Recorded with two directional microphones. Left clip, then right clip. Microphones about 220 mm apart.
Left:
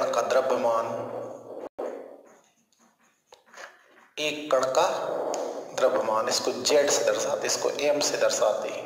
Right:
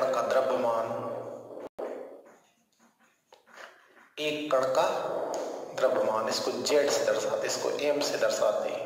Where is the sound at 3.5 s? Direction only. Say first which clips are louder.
Left 3 dB; 45° left (ahead or behind).